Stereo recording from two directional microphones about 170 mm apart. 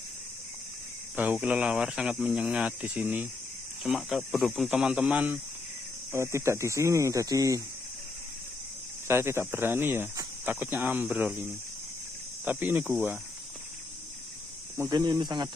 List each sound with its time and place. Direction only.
1.1 s speech: 10° right (ahead or behind)
9.0 s speech: 15° right (ahead or behind)
12.4 s speech: 10° right (ahead or behind)
14.8 s speech: 20° right (ahead or behind)